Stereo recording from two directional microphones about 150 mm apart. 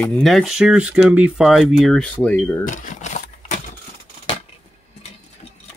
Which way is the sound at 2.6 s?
60° left (ahead or behind).